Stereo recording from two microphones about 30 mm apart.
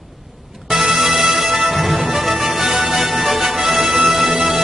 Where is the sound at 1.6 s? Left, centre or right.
Centre.